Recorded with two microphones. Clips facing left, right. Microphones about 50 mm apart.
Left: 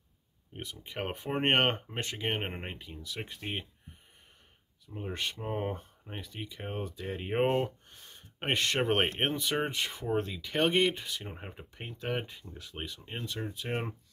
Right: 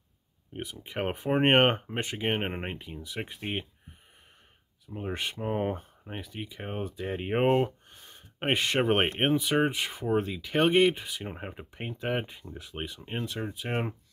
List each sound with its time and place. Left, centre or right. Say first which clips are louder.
0.5 s speech: right 4 dB; centre
5.0 s speech: right 3 dB; centre